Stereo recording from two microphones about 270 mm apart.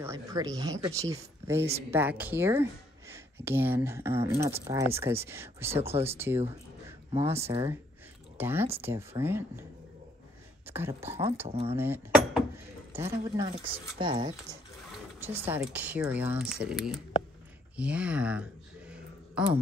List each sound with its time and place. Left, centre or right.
0.0 s speech: centre
7.3 s speech: right
8.4 s speech: centre
10.7 s speech: centre
11.7 s speech: centre
17.7 s a sound: centre